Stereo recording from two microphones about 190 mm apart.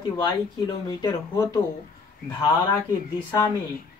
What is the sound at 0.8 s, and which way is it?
Speech, 15° left (ahead or behind).